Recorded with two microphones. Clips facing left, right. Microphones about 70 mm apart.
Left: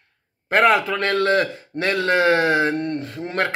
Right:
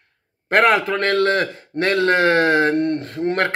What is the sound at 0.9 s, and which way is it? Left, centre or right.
A man's voice, right.